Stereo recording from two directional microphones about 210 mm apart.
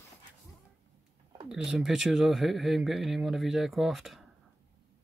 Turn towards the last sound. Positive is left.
turn(degrees=0)  # may be behind; listen again after turning